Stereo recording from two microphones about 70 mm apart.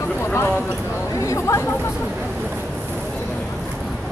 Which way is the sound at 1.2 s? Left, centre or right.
Left.